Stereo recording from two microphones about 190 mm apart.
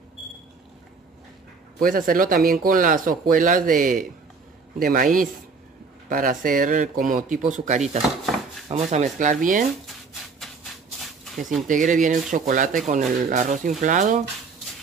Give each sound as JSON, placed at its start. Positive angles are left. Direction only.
{"t": 1.8, "sound": "speech", "side_deg": -50}
{"t": 11.6, "sound": "speech", "side_deg": -45}